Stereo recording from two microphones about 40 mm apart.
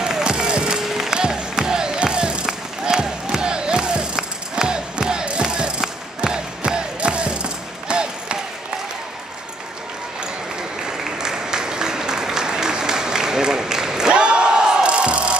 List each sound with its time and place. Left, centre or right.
0.0 s music: centre
0.8 s music: centre
1.6 s a sound: centre
4.2 s music: centre
10.9 s applause: centre